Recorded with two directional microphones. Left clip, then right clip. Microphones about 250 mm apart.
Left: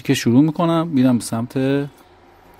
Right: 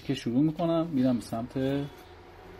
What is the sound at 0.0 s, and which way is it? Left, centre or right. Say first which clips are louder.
Speech: left 12 dB; left.